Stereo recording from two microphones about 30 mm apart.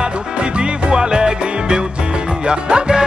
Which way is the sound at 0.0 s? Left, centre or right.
Right.